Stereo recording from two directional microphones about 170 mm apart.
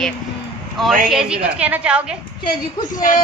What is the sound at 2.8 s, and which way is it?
Speech, 50° left (ahead or behind).